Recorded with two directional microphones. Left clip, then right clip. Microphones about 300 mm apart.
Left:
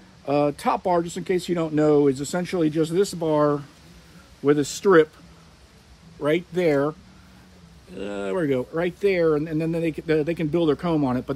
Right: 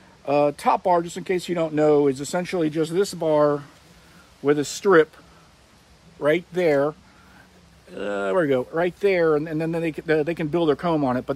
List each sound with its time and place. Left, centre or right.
0.2 s speech: centre
6.1 s speech: centre